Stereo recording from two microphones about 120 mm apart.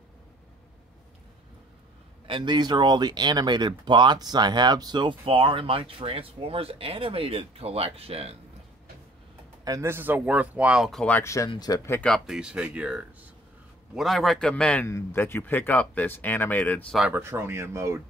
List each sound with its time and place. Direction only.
2.2 s speech: 40° right (ahead or behind); by 8.4 s 55° right (ahead or behind)
9.7 s speech: 20° right (ahead or behind); by 11.1 s centre (ahead or behind)
11.2 s speech: 25° left (ahead or behind)
11.9 s speech: 10° left (ahead or behind)
12.3 s a man's voice: 5° right (ahead or behind); by 14.9 s 10° left (ahead or behind)
14.9 s speech: 20° left (ahead or behind)
17.1 s speech: 20° right (ahead or behind)